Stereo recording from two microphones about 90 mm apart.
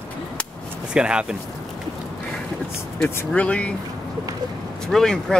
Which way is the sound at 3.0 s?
15° left (ahead or behind).